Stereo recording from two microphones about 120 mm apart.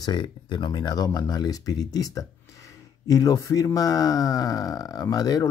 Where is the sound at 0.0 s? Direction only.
40° left (ahead or behind).